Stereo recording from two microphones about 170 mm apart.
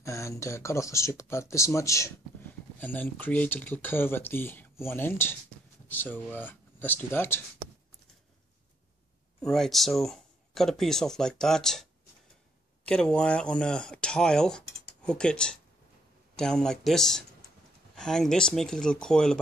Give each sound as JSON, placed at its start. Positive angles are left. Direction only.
{"t": 0.0, "sound": "speech", "side_deg": 15}
{"t": 9.4, "sound": "speech", "side_deg": 0}